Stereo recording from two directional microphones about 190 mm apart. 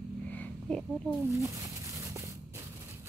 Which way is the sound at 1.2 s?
15° right (ahead or behind).